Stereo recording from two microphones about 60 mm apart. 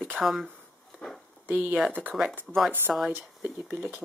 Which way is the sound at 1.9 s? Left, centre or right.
Right.